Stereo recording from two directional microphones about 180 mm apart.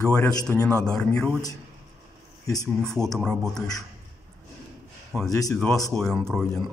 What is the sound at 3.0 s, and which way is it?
Speech, 5° left (ahead or behind).